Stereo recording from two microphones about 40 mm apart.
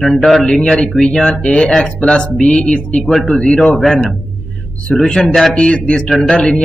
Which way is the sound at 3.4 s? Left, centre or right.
Left.